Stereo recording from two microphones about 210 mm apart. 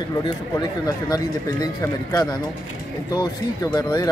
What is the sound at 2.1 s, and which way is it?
Speech, 20° left (ahead or behind).